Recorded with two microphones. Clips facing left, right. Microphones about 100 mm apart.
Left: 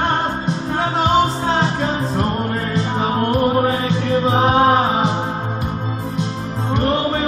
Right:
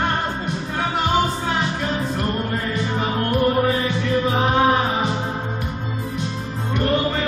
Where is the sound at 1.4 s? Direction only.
30° left (ahead or behind).